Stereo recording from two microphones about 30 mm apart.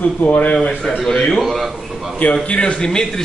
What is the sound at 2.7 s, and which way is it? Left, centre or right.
Speech, left.